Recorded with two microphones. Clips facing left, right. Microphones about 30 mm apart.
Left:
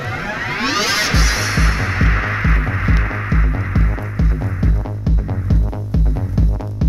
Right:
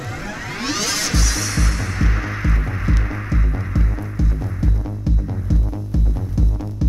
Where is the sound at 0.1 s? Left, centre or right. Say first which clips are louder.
Left 8 dB; left.